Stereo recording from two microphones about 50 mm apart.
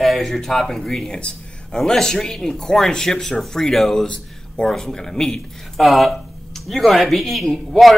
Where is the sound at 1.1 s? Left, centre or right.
Centre.